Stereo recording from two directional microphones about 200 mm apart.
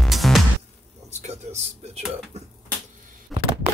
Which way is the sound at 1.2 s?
35° right (ahead or behind).